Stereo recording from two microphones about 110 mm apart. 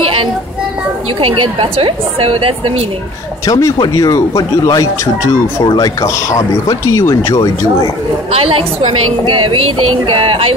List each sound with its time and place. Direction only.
1.2 s a woman's voice: 55° right (ahead or behind)
3.4 s speech: 30° left (ahead or behind)
8.3 s a woman's voice: 60° right (ahead or behind)